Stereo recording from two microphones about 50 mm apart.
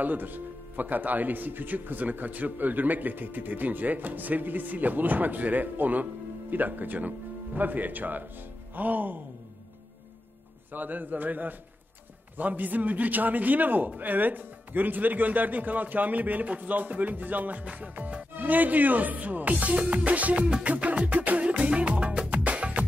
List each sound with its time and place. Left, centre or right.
0.0 s a man's voice: right
10.7 s a man's voice: right
22.3 s music: right